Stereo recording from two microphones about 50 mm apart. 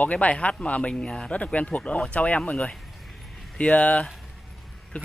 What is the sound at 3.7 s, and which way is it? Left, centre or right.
Speech, left.